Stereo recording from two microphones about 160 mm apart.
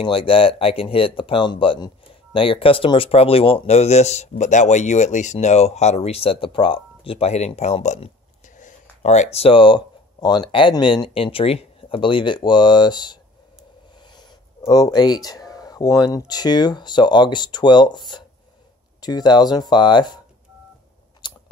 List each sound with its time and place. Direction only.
0.0 s speech: 35° left (ahead or behind)
21.2 s biting: 30° left (ahead or behind)